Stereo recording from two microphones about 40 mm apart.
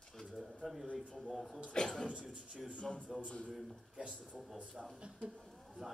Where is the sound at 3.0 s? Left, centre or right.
Right.